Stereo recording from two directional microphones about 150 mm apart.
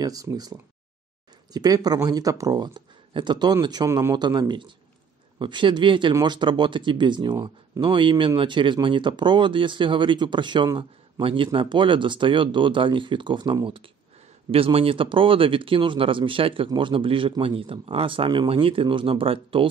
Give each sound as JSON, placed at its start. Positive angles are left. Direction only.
{"t": 0.0, "sound": "speech", "side_deg": -25}